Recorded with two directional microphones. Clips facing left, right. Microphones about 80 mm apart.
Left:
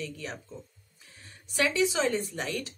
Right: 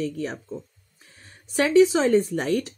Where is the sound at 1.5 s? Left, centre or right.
Right.